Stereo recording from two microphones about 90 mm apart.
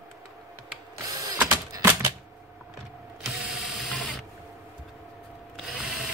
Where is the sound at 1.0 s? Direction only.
45° right (ahead or behind).